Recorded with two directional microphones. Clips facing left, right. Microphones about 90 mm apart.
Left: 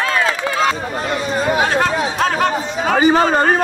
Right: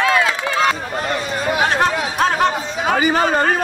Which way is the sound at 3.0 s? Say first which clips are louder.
Left 4 dB; 30° left (ahead or behind).